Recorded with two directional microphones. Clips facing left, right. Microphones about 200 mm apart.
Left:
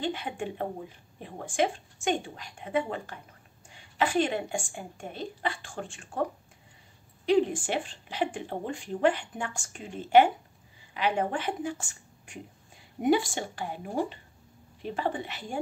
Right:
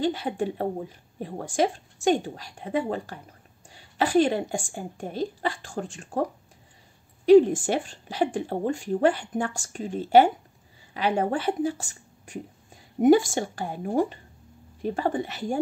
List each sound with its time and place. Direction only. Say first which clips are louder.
0.0 s speech: right 6 dB; 35° right (ahead or behind)
7.2 s a woman's voice: right 9 dB; 40° right (ahead or behind)